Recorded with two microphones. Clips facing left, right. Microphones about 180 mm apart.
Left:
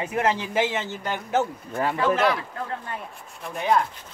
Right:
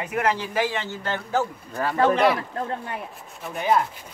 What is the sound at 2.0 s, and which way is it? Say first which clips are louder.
Speech: right 3 dB; centre (ahead or behind).